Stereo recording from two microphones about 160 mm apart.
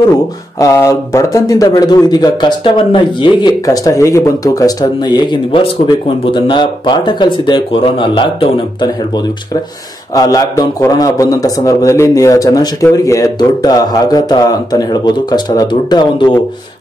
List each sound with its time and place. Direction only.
0.6 s a man's voice: 20° left (ahead or behind)